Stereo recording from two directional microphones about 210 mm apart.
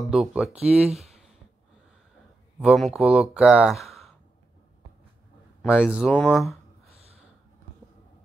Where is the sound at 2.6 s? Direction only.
Centre (ahead or behind).